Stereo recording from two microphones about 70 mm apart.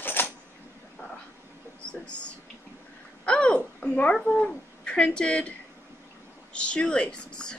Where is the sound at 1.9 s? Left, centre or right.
Centre.